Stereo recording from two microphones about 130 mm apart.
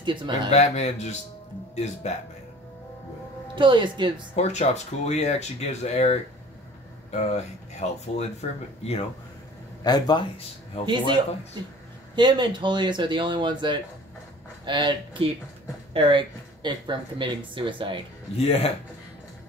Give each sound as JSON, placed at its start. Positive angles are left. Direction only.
{"t": 0.0, "sound": "speech", "side_deg": -35}
{"t": 0.5, "sound": "speech", "side_deg": 60}
{"t": 2.0, "sound": "speech", "side_deg": 60}
{"t": 3.5, "sound": "speech", "side_deg": -40}
{"t": 4.4, "sound": "speech", "side_deg": 60}
{"t": 9.8, "sound": "speech", "side_deg": 30}
{"t": 10.8, "sound": "speech", "side_deg": 50}
{"t": 11.6, "sound": "speech", "side_deg": -35}
{"t": 18.4, "sound": "speech", "side_deg": 50}